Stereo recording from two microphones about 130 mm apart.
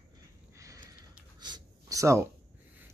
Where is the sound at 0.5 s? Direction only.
25° right (ahead or behind).